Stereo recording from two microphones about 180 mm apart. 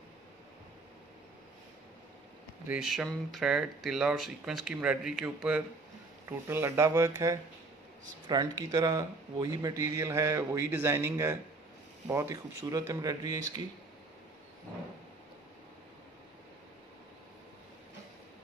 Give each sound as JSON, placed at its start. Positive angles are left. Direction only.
{"t": 2.7, "sound": "speech", "side_deg": -5}